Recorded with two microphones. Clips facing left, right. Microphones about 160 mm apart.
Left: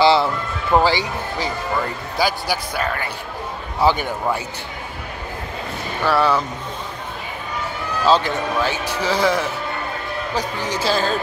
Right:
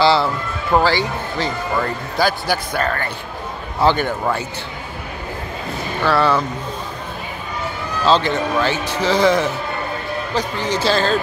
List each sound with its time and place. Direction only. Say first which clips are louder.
0.0 s speech: even; 15° left (ahead or behind)
6.0 s speech: right 1 dB; 10° left (ahead or behind)
8.0 s speech: right 1 dB; 5° left (ahead or behind)